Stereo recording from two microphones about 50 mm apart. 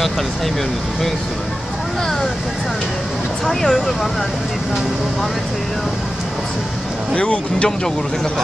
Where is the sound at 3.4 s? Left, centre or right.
Centre.